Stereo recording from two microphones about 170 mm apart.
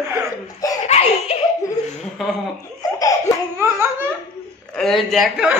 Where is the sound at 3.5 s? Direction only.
15° right (ahead or behind).